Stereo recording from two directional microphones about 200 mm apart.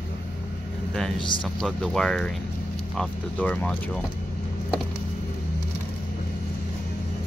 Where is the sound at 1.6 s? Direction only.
Centre (ahead or behind).